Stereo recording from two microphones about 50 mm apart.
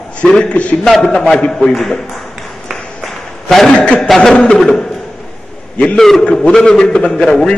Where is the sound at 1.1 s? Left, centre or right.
Centre.